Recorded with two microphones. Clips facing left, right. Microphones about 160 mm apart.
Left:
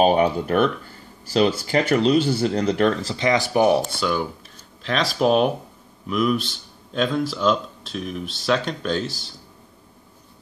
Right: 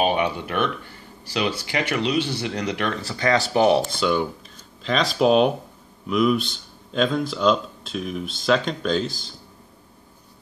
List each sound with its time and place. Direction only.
0.0 s speech: 40° left (ahead or behind)
3.2 s speech: 20° left (ahead or behind); by 9.3 s 5° left (ahead or behind)